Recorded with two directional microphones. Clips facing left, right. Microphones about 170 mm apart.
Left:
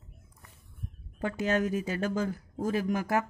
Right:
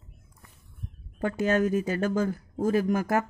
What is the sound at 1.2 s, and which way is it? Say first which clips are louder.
Speech: right 4 dB; 50° right (ahead or behind).